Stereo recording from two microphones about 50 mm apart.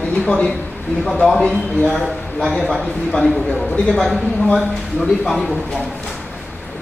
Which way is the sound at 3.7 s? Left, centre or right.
Centre.